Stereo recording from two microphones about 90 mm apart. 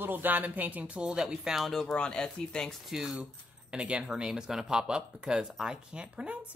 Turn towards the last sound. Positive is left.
turn(degrees=-10)  # may be behind; listen again after turning